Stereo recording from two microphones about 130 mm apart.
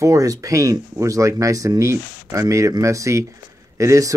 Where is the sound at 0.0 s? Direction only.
25° right (ahead or behind).